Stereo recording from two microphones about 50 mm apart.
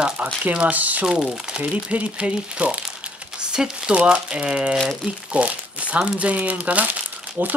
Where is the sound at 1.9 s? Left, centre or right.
Right.